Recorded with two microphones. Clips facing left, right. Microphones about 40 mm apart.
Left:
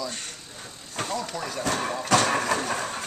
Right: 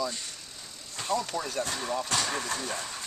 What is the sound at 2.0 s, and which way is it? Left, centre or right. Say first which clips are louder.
Speech: left 8 dB; left.